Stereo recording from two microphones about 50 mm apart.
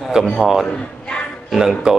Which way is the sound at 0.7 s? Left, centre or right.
Centre.